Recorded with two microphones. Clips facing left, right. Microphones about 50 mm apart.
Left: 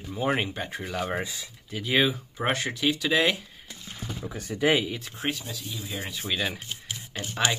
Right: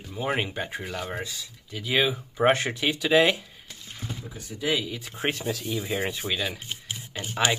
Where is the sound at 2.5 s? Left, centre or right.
Right.